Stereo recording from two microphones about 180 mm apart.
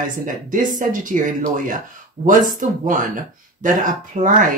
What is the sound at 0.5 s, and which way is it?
Speech, 45° right (ahead or behind).